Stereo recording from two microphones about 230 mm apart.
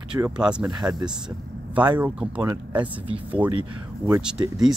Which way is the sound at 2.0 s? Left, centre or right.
Centre.